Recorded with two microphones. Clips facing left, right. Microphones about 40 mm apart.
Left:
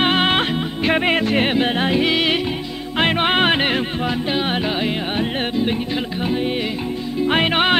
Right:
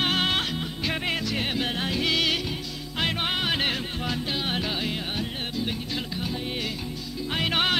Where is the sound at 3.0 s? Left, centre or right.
Left.